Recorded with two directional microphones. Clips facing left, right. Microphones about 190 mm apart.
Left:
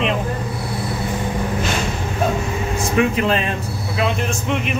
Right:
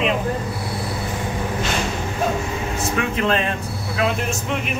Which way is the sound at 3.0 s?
15° left (ahead or behind).